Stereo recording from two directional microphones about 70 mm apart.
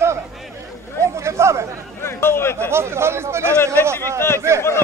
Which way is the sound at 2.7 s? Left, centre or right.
Right.